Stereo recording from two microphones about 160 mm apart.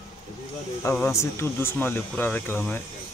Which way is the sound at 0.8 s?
15° left (ahead or behind).